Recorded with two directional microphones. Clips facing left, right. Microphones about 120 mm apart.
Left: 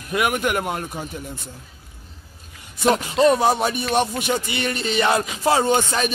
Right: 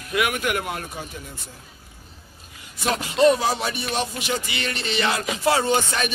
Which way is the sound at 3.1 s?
40° left (ahead or behind).